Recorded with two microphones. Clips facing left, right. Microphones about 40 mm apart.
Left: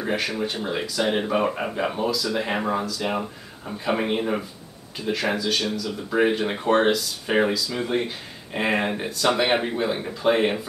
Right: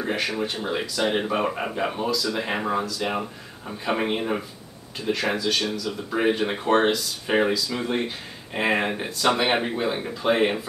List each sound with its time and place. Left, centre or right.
0.0 s speech: centre